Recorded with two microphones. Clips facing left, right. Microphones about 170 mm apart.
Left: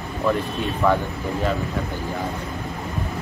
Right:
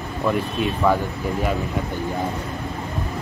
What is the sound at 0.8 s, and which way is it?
Speech, 10° right (ahead or behind).